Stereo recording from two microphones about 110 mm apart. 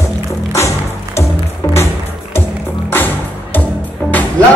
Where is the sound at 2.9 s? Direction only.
15° left (ahead or behind).